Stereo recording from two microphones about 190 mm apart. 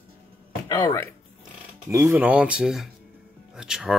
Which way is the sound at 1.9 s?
15° right (ahead or behind).